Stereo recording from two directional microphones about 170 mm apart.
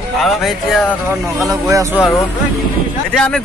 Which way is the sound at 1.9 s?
10° left (ahead or behind).